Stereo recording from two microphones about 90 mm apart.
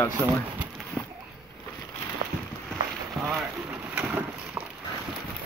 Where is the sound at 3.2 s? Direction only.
10° right (ahead or behind).